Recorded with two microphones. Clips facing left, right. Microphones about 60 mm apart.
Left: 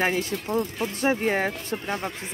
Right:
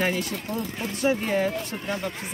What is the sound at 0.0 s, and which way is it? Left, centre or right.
Speech, left.